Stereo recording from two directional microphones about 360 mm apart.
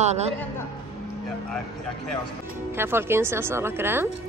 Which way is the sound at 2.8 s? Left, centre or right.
Centre.